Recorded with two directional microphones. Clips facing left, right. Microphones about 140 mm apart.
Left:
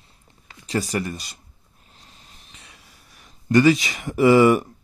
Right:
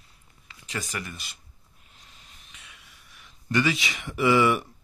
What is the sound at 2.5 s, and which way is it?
Speech, 35° left (ahead or behind).